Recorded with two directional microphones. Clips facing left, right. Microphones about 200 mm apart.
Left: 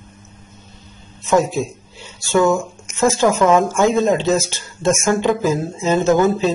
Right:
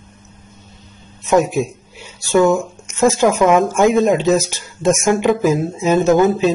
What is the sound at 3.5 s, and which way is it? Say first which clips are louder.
Speech: right 2 dB; 20° right (ahead or behind).